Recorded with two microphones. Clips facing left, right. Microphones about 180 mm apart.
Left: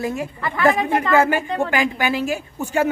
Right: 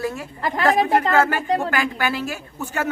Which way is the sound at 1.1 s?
15° left (ahead or behind).